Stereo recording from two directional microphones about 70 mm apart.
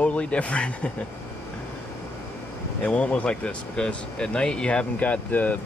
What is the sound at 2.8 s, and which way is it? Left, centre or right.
Speech, centre.